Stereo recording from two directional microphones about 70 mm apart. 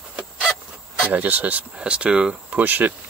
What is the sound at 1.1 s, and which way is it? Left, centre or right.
Speech, right.